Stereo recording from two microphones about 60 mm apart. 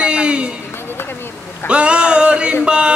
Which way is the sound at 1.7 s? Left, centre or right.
Centre.